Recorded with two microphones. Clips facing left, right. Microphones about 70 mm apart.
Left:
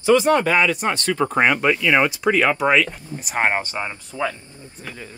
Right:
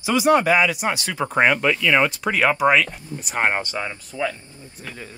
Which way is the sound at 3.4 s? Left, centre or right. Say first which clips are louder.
Left 1 dB; centre.